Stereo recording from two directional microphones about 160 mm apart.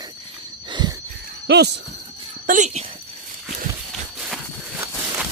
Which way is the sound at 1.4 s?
90° right.